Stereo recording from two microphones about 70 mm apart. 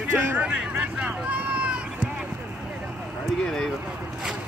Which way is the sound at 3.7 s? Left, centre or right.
Centre.